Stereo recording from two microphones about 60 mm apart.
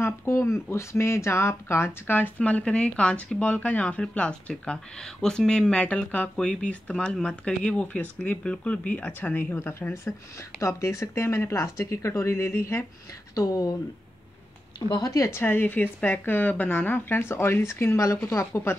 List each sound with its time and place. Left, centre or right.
0.0 s a woman's voice: left
2.1 s speech: left
9.6 s a woman's voice: left
13.3 s speech: left
15.0 s speech: left
15.2 s a woman's voice: left